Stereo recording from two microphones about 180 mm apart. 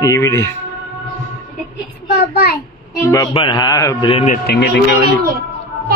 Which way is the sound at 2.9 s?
20° left (ahead or behind).